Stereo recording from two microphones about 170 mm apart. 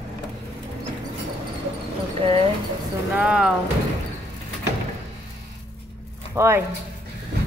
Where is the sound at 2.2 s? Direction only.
35° right (ahead or behind).